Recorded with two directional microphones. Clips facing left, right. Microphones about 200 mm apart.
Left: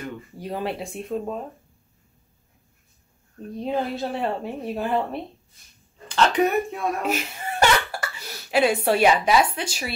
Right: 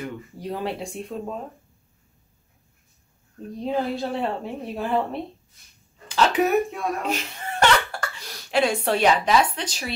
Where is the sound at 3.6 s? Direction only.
Centre (ahead or behind).